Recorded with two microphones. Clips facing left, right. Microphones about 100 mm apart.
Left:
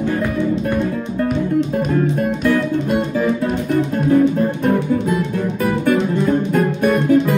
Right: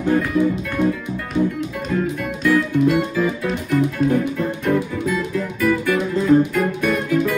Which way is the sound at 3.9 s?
40° left (ahead or behind).